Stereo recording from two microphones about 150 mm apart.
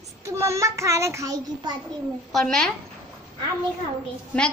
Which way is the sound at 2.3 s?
Centre (ahead or behind).